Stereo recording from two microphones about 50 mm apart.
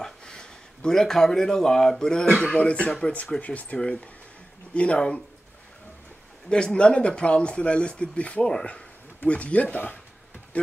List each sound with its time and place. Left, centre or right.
0.0 s speech: centre
6.5 s speech: centre